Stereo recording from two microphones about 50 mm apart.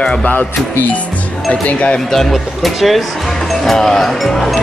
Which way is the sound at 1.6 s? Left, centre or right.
Left.